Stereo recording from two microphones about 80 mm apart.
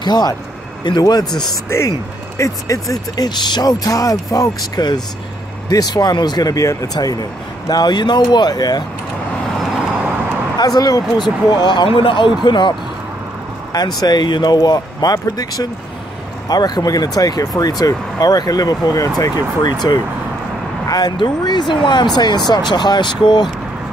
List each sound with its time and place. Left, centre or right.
0.0 s speech: left
2.3 s speech: left
3.3 s speech: left
10.6 s speech: left
12.4 s speech: left
13.7 s speech: left
20.9 s speech: left